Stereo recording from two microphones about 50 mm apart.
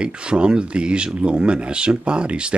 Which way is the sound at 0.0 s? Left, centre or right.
Centre.